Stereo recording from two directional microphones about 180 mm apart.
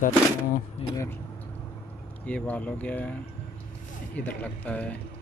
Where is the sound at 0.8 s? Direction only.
30° left (ahead or behind).